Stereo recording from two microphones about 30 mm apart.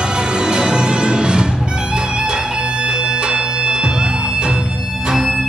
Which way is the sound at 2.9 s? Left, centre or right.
Right.